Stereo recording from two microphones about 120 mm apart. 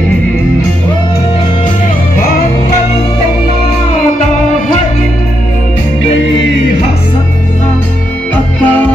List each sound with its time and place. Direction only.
8.6 s music: 15° left (ahead or behind)